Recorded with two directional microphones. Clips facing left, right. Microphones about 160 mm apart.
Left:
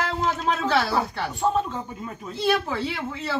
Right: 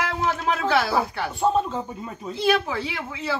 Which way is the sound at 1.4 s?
25° right (ahead or behind).